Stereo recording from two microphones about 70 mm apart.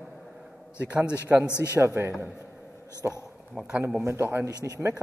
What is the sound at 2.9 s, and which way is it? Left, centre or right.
Speech, left.